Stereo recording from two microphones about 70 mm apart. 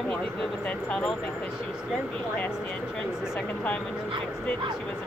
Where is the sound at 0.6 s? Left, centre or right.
Centre.